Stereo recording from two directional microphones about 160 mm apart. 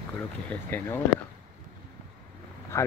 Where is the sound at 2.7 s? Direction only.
15° left (ahead or behind).